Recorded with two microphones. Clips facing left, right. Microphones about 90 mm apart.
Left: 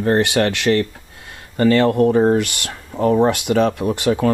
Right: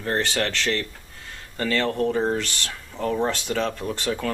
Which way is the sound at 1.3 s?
15° left (ahead or behind).